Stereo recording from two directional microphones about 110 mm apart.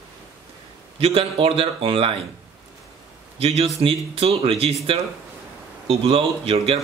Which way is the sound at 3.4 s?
65° right (ahead or behind).